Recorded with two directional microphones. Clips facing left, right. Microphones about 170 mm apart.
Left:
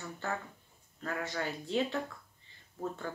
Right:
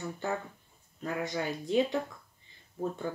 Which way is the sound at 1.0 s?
15° right (ahead or behind).